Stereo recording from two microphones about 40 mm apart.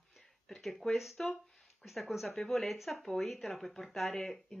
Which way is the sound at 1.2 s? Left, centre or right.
Centre.